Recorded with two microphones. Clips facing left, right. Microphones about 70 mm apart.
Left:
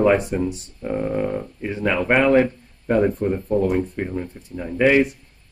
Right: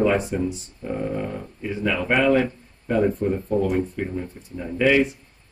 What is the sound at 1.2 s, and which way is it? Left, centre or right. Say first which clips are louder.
Speech: left 5 dB; left.